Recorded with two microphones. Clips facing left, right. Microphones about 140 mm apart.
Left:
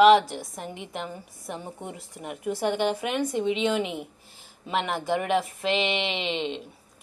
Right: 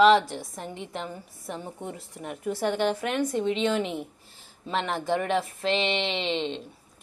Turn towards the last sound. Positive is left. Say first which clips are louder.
# right 1 dB
turn(degrees=10)  # may be behind; listen again after turning